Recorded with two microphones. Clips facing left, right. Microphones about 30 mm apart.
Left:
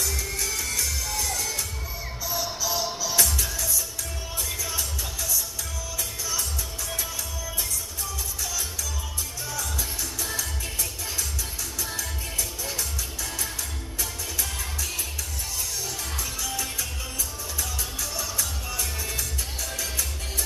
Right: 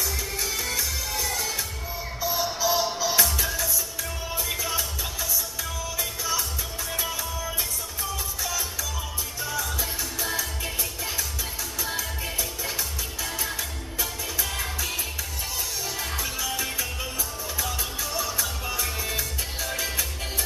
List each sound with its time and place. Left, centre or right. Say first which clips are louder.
0.0 s music: even; centre
9.5 s music: right 3 dB; centre
16.2 s music: right 1 dB; centre